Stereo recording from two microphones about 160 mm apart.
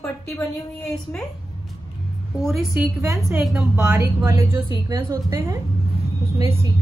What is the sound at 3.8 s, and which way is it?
A woman's voice, 15° right (ahead or behind).